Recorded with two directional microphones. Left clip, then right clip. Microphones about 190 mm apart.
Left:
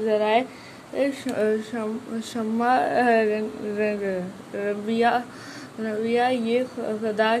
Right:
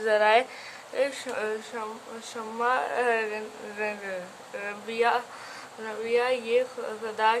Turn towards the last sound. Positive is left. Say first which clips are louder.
# left 3 dB
turn(degrees=15)  # may be behind; listen again after turning